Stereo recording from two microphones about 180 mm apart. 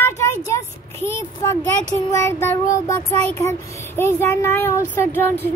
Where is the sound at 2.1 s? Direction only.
15° left (ahead or behind).